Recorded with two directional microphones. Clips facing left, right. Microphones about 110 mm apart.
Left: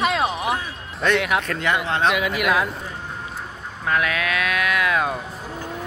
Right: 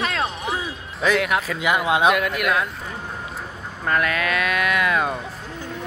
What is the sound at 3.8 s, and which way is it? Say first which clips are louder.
Speech: right 1 dB; centre (ahead or behind).